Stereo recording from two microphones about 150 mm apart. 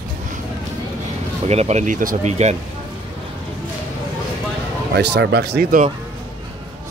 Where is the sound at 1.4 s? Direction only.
45° right (ahead or behind); by 2.3 s 65° right (ahead or behind).